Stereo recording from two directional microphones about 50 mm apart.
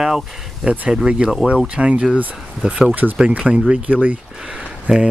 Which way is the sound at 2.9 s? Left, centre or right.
Right.